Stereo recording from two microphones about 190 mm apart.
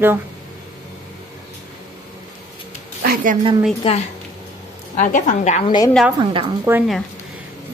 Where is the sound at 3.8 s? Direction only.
30° left (ahead or behind).